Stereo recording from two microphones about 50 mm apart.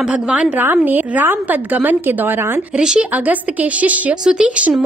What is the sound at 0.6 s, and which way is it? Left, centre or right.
A woman's voice, right.